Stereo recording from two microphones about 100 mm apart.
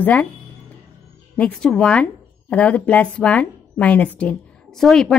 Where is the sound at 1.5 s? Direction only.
10° left (ahead or behind).